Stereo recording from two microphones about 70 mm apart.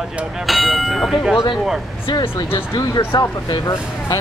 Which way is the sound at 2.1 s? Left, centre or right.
Left.